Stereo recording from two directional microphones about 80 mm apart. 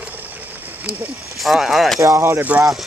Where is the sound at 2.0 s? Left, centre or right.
Right.